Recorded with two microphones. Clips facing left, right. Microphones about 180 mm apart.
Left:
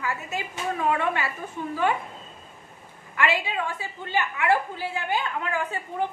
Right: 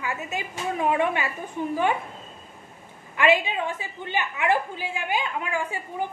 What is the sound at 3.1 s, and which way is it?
A woman's voice, 20° right (ahead or behind).